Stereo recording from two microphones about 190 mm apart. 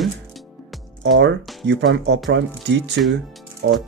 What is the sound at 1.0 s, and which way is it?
Speech, 70° right (ahead or behind).